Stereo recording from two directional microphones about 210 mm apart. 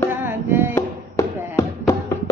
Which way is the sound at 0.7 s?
15° left (ahead or behind).